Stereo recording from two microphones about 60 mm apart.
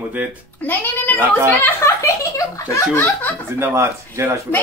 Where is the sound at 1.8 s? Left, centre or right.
Left.